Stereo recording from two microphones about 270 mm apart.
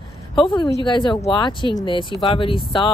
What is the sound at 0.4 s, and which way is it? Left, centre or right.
Speech, centre.